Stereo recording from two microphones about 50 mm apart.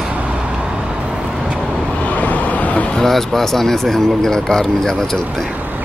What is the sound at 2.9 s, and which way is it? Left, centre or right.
Speech, centre.